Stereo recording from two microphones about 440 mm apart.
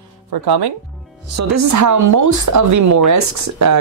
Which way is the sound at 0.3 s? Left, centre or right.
Right.